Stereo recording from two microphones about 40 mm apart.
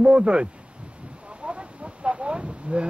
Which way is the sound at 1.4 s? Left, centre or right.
Right.